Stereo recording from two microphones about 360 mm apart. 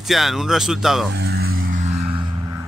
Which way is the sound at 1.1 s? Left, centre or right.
Right.